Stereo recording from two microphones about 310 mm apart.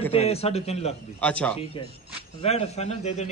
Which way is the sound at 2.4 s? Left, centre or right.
Centre.